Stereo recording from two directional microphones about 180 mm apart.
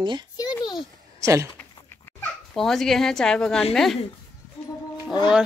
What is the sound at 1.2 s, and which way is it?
Speech, 15° right (ahead or behind).